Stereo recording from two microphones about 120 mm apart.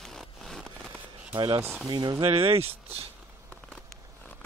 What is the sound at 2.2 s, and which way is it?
Speech, 50° right (ahead or behind).